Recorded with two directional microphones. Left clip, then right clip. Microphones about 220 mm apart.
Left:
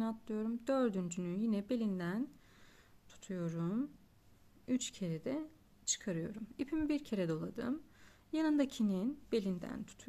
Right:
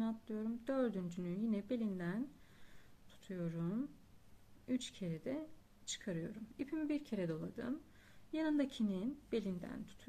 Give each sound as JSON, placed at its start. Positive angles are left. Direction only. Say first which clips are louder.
{"t": 0.0, "sound": "speech", "louder": "left 3 dB", "side_deg": 35}